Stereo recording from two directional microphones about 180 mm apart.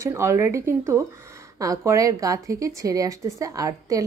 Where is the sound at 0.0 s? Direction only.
15° right (ahead or behind).